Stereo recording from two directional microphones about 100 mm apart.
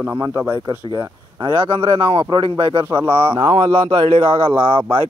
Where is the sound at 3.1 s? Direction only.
65° right (ahead or behind).